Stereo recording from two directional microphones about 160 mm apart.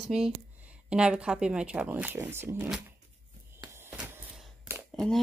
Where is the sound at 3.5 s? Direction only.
15° right (ahead or behind).